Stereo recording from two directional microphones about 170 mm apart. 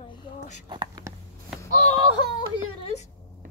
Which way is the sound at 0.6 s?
25° right (ahead or behind).